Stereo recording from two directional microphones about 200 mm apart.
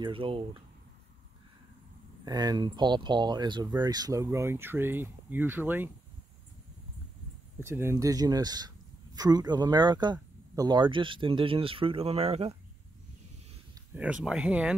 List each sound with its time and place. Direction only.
0.0 s speech: 25° right (ahead or behind)
2.2 s speech: 20° right (ahead or behind)
7.6 s speech: 10° right (ahead or behind); by 12.5 s 30° right (ahead or behind)
13.9 s speech: 5° right (ahead or behind)